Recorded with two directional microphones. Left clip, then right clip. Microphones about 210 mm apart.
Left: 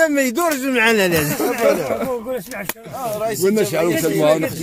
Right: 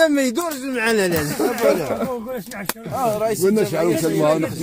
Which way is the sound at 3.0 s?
35° right (ahead or behind).